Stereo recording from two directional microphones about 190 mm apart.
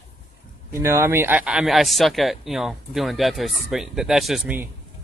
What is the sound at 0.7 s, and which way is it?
Speech, 15° right (ahead or behind).